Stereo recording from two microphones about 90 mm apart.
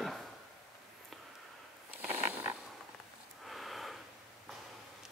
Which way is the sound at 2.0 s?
25° right (ahead or behind).